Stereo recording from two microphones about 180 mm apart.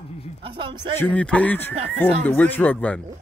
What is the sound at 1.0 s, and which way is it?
Speech, 5° left (ahead or behind).